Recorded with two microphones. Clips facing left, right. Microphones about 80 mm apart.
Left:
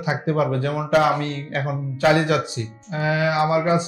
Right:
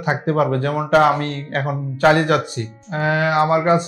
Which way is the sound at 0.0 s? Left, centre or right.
Right.